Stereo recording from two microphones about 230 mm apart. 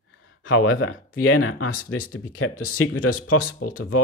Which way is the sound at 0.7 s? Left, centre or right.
Left.